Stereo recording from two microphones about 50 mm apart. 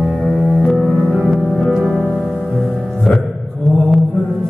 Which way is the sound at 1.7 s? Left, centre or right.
Centre.